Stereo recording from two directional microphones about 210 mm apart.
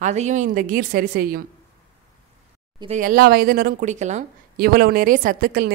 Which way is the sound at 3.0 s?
45° right (ahead or behind).